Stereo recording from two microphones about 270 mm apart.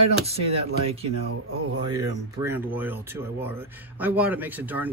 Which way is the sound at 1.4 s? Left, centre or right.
Right.